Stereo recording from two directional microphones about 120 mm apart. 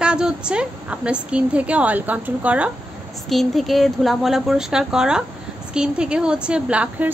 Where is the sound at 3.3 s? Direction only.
Centre (ahead or behind).